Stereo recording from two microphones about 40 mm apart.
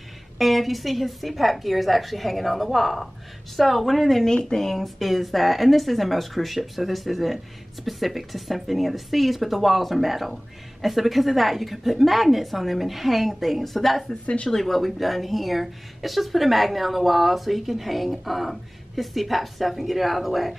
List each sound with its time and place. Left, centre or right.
0.4 s speech: centre
4.3 s speech: centre
4.6 s speech: centre
14.2 s speech: left
14.5 s speech: centre